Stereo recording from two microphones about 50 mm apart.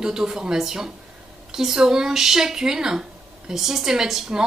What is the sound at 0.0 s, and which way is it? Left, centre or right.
A woman's voice, centre.